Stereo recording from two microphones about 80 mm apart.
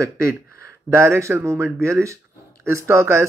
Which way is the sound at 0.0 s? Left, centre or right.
Right.